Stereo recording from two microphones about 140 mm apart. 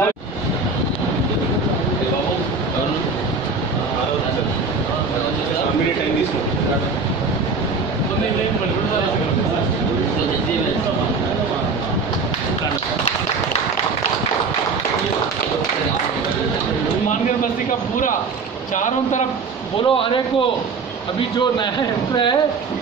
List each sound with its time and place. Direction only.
19.8 s a man's voice: 40° left (ahead or behind)